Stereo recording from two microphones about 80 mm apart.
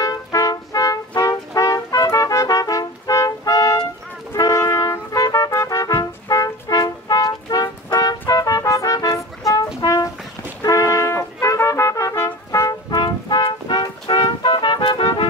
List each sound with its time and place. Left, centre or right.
0.0 s music: left
9.8 s brass instrument: left
10.6 s trumpet: left
13.0 s music: left